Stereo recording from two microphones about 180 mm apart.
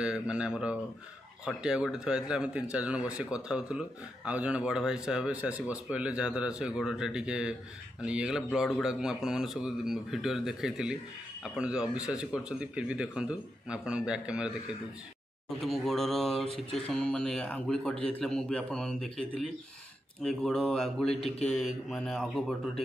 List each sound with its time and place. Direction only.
0.0 s speech: 5° right (ahead or behind)
15.6 s speech: centre (ahead or behind)